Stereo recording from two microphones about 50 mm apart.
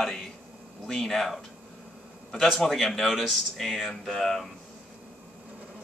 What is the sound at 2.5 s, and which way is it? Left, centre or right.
Speech, centre.